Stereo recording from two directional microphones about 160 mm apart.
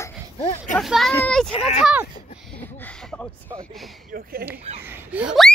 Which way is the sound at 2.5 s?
10° left (ahead or behind).